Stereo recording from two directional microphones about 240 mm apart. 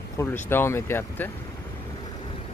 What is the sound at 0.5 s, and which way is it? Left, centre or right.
Speech, centre.